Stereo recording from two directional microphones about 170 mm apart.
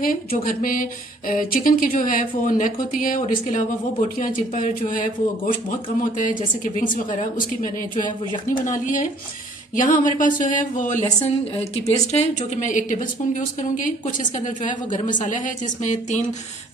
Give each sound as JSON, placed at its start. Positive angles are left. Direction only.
{"t": 0.0, "sound": "a woman's voice", "side_deg": 55}
{"t": 12.1, "sound": "a woman's voice", "side_deg": 40}